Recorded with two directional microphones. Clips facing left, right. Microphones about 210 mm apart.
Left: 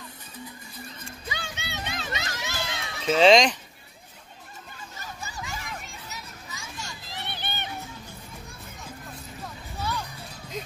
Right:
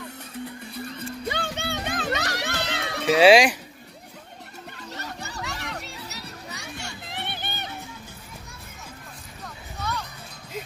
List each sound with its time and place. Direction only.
1.2 s music: 60° right (ahead or behind)
3.2 s speech: 10° right (ahead or behind)
4.7 s music: 70° right (ahead or behind); by 7.7 s 40° right (ahead or behind)
9.8 s music: 10° left (ahead or behind)